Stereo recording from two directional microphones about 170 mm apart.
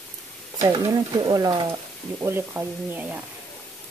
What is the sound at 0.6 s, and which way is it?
Speech, 25° right (ahead or behind).